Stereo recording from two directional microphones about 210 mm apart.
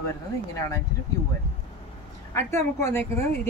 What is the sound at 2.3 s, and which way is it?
Speech, 10° left (ahead or behind).